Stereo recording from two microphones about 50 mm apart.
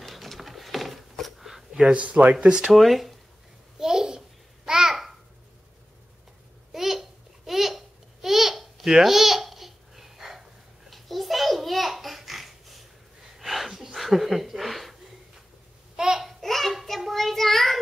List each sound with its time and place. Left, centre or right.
0.0 s a sound: centre
2.0 s speech: right
2.7 s speech: centre
3.7 s a sound: centre
4.6 s babbling: centre
6.7 s babbling: centre
10.9 s a sound: centre
16.0 s babbling: centre
16.3 s child singing: centre